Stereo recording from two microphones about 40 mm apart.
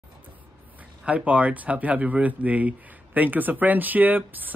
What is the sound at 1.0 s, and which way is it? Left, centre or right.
Speech, right.